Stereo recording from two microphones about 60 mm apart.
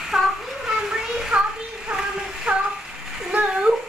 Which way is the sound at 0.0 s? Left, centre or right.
Centre.